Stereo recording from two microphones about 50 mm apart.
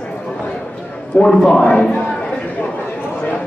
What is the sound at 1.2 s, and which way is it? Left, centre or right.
Speech, centre.